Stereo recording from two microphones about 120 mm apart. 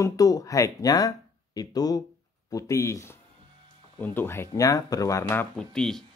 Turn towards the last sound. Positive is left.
turn(degrees=5)  # may be behind; listen again after turning